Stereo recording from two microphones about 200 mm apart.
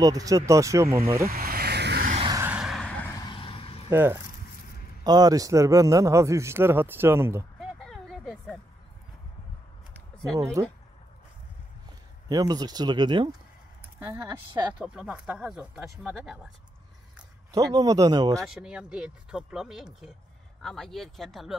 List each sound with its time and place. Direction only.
0.0 s speech: 15° right (ahead or behind)
1.3 s vehicle: 50° right (ahead or behind)
2.1 s vehicle: 20° right (ahead or behind)
2.4 s vehicle: 5° right (ahead or behind)
3.1 s vehicle: 20° left (ahead or behind)
3.9 s speech: 10° right (ahead or behind)
7.8 s a sound: centre (ahead or behind)
10.3 s speech: 15° right (ahead or behind)
12.3 s speech: 20° right (ahead or behind)
13.9 s speech: 10° right (ahead or behind)
17.5 s speech: 20° right (ahead or behind)
18.4 s speech: 5° right (ahead or behind)